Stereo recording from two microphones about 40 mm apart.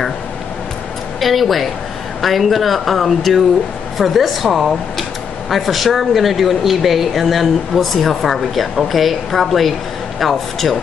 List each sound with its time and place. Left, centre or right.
1.2 s speech: centre